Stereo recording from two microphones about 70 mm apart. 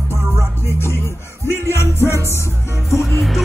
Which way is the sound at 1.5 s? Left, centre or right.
Left.